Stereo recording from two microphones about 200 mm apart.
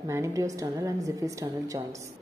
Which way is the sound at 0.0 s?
15° right (ahead or behind).